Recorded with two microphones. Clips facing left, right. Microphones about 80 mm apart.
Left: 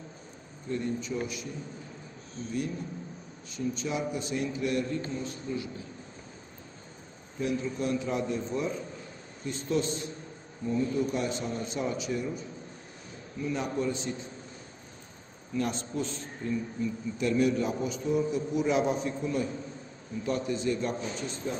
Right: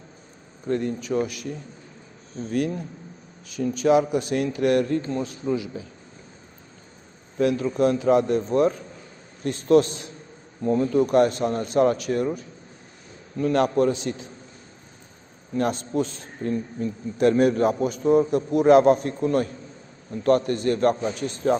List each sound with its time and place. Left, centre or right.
0.7 s a man's voice: right
2.5 s a man's voice: right
7.3 s a man's voice: right
9.4 s a man's voice: right
10.6 s a man's voice: right
15.5 s a man's voice: right